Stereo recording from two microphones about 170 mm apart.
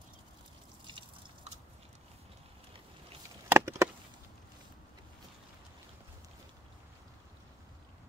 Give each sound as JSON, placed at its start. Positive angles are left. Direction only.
{"t": 0.8, "sound": "drip", "side_deg": -30}
{"t": 3.4, "sound": "chop", "side_deg": -15}